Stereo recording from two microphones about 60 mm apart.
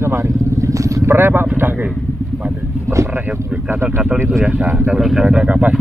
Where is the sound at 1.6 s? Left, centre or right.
Right.